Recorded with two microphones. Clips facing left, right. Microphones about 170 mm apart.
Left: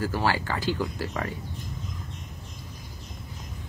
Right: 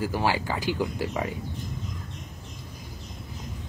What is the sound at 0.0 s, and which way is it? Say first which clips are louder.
Speech: even; 15° right (ahead or behind).